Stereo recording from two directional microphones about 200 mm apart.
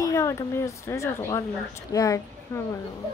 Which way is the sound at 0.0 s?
15° left (ahead or behind).